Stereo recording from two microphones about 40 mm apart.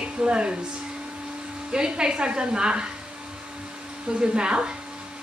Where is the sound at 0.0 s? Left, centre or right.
Right.